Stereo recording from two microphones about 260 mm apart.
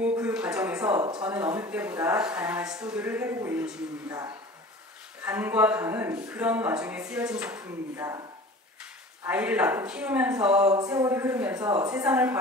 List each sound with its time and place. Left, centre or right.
0.2 s a sound: centre
1.0 s a woman's voice: centre
1.3 s speech: centre
5.2 s speech: centre
9.2 s speech: centre
10.7 s a woman's voice: centre